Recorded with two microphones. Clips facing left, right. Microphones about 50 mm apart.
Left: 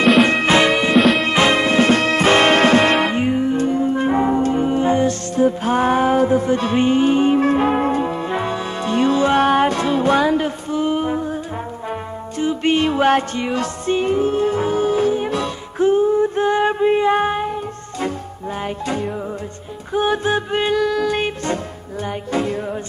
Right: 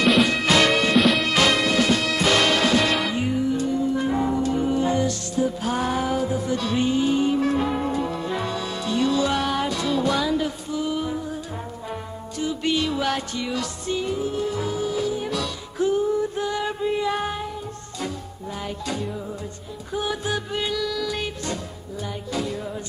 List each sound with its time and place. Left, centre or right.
0.2 s music: left
0.6 s music: centre
0.9 s music: centre
1.2 s music: left
10.3 s male singing: left
11.9 s music: left
18.6 s music: left